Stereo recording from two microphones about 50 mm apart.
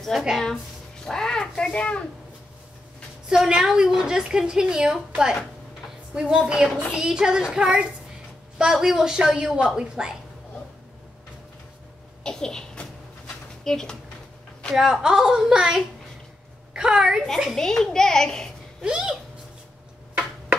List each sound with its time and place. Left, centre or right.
0.1 s a woman's voice: centre
1.0 s a child's voice: centre
1.6 s a child's voice: left
3.3 s a woman's voice: centre
12.2 s a child's voice: centre
14.8 s a woman's voice: centre
17.6 s a child's voice: centre
18.9 s a woman's voice: centre